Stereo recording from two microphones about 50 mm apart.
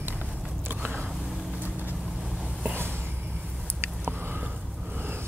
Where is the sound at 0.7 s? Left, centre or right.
Right.